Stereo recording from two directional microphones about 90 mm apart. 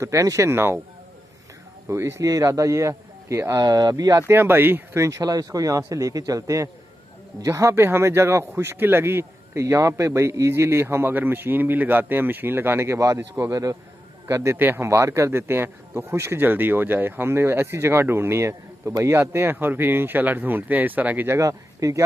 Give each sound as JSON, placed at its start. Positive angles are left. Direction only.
{"t": 0.0, "sound": "speech", "side_deg": -35}
{"t": 1.9, "sound": "speech", "side_deg": -30}
{"t": 4.3, "sound": "speech", "side_deg": -25}
{"t": 21.3, "sound": "speech", "side_deg": -35}